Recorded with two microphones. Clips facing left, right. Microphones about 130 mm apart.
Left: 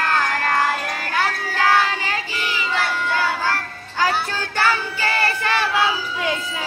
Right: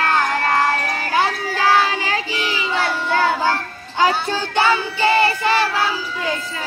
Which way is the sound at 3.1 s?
25° right (ahead or behind).